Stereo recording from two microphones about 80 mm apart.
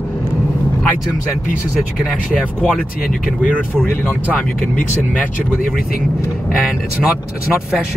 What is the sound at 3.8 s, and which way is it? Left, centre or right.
Speech, left.